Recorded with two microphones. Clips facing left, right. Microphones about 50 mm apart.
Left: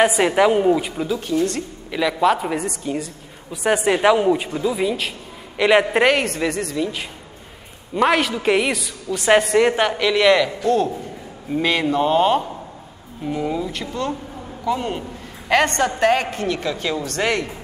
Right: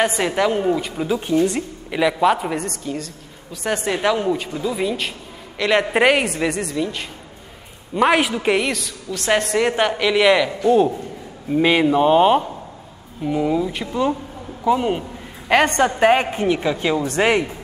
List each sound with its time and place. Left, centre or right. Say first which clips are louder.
0.0 s speech: left 3 dB; centre
1.0 s a woman's voice: right 6 dB; right; by 2.6 s centre
2.6 s speech: left 2 dB; centre
5.9 s a woman's voice: right 1 dB; centre